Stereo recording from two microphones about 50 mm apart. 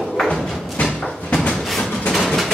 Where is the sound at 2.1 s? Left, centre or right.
Centre.